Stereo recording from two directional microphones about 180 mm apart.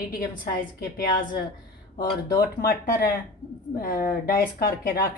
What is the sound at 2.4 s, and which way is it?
Speech, 60° left (ahead or behind).